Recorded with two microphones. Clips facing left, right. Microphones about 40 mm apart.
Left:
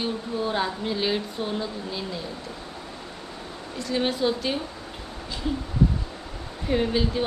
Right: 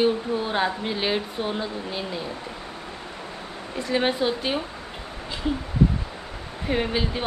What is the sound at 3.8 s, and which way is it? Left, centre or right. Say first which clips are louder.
Speech: right 2 dB; right.